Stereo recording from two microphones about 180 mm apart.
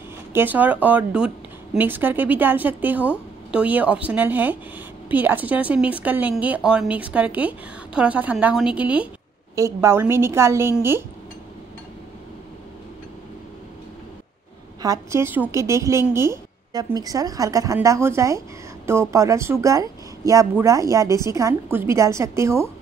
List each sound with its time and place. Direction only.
0.3 s a woman's voice: 10° right (ahead or behind)
14.8 s a woman's voice: 15° right (ahead or behind)